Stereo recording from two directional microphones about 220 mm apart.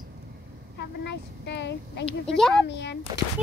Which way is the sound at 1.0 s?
50° left (ahead or behind).